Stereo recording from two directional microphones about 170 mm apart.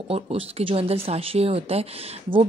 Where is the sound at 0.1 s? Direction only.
35° right (ahead or behind).